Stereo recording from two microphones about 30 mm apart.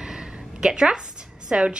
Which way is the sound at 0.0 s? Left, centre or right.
Right.